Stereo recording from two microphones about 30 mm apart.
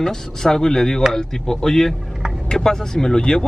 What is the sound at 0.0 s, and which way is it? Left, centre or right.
Speech, centre.